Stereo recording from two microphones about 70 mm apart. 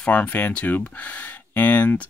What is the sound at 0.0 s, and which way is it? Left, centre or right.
Speech, centre.